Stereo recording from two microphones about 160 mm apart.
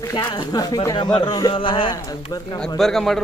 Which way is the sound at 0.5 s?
25° left (ahead or behind).